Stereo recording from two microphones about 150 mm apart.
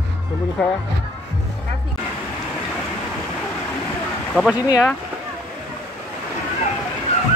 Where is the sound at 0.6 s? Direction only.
10° left (ahead or behind).